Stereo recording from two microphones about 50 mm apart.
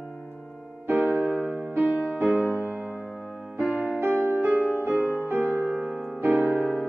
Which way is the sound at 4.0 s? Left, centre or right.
Right.